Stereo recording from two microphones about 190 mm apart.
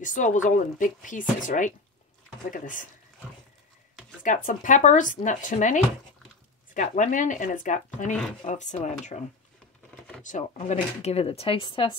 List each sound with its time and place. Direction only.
0.0 s speech: 40° left (ahead or behind)
4.2 s speech: 45° left (ahead or behind)
10.2 s speech: 40° left (ahead or behind)